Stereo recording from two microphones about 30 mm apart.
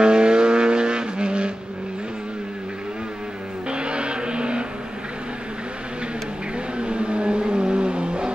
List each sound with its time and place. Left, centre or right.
0.0 s vehicle: right
3.7 s vehicle: right
6.8 s vehicle: right